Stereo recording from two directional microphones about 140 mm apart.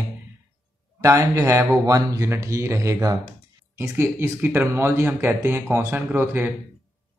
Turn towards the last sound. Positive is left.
turn(degrees=-15)  # may be behind; listen again after turning